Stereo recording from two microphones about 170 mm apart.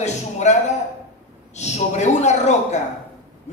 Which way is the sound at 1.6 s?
40° left (ahead or behind).